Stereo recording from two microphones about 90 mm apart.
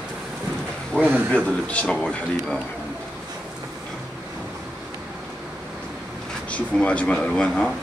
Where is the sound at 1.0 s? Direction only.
25° right (ahead or behind).